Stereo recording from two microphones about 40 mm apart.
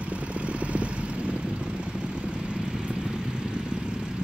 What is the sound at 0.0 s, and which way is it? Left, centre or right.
Vehicle, right.